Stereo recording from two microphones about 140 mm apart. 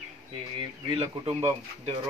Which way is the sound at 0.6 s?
45° right (ahead or behind).